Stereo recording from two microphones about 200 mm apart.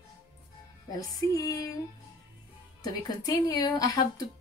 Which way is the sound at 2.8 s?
20° left (ahead or behind).